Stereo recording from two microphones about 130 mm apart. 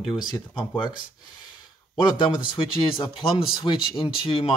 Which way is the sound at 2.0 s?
40° left (ahead or behind).